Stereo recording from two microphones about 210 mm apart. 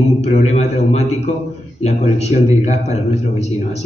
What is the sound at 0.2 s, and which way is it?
A man's voice, 30° left (ahead or behind).